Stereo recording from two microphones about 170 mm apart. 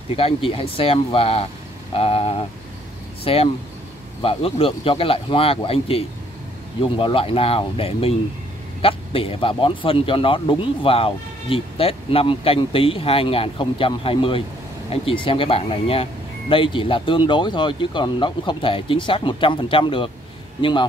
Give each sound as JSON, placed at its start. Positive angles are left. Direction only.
{"t": 0.1, "sound": "speech", "side_deg": 35}
{"t": 2.0, "sound": "a sound", "side_deg": 35}
{"t": 3.3, "sound": "speech", "side_deg": 35}